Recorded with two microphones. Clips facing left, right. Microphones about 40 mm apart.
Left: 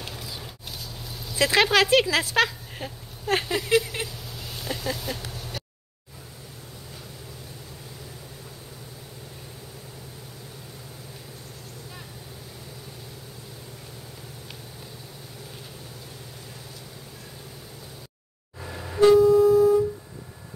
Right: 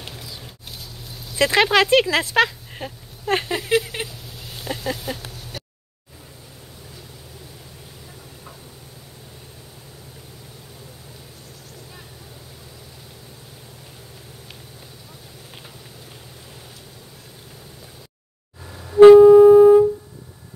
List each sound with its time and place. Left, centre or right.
0.1 s a sound: centre
18.6 s music: left
18.9 s music: right